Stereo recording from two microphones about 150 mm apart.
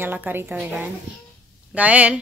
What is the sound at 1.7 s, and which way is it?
Speech, 10° right (ahead or behind).